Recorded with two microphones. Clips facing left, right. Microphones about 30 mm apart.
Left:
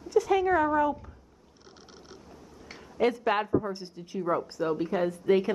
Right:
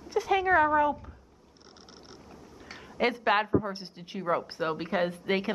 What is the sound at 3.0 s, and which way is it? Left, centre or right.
A woman's voice, right.